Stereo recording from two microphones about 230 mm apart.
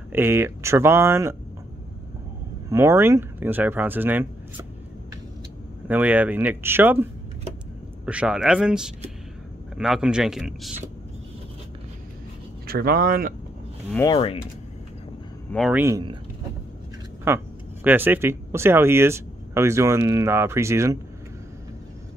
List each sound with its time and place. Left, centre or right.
0.1 s speech: centre
2.7 s speech: centre
5.9 s speech: centre
12.6 s speech: right
13.9 s speech: centre
15.5 s speech: centre
15.8 s speech: centre
17.3 s speech: centre